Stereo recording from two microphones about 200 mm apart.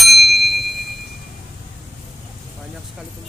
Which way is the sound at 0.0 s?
Centre (ahead or behind).